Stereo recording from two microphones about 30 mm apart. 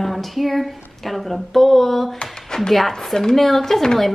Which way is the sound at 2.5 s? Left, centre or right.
Left.